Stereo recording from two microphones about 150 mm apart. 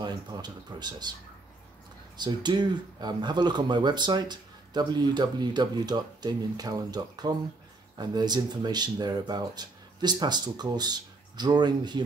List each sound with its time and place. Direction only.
0.0 s speech: 30° right (ahead or behind)
2.1 s speech: 30° right (ahead or behind)